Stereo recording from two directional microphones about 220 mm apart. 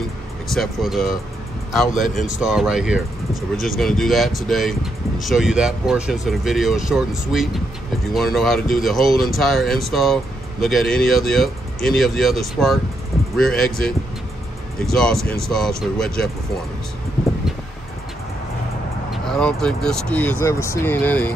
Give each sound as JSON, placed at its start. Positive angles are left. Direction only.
{"t": 0.5, "sound": "speech", "side_deg": 0}
{"t": 2.4, "sound": "speech", "side_deg": -5}
{"t": 19.2, "sound": "speech", "side_deg": 5}